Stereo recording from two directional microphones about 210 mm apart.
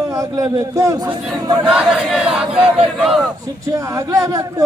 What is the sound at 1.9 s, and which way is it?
Speech, 5° right (ahead or behind).